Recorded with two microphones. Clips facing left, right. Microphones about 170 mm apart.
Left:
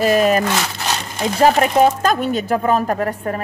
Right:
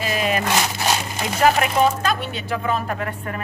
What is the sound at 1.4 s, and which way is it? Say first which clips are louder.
Speech: left 4 dB; 40° left (ahead or behind).